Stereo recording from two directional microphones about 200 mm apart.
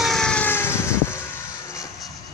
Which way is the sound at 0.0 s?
Centre (ahead or behind).